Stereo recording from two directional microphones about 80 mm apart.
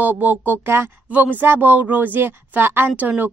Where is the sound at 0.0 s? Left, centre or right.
Right.